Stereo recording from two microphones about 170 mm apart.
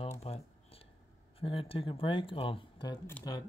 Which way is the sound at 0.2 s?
35° left (ahead or behind).